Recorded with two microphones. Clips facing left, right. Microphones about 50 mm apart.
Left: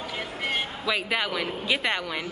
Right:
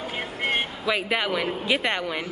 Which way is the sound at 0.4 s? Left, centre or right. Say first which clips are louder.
Right 4 dB; right.